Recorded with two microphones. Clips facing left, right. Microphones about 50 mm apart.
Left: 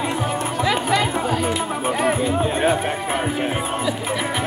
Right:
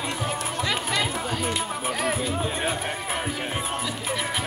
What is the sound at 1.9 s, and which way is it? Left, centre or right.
Music, centre.